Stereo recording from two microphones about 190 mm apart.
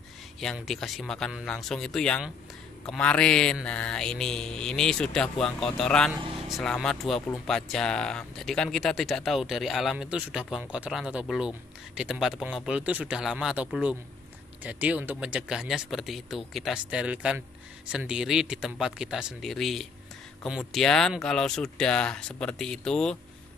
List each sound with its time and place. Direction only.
0.4 s mantra: centre (ahead or behind)